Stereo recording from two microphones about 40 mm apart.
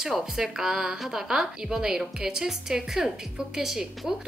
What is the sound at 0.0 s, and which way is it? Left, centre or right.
A woman's voice, centre.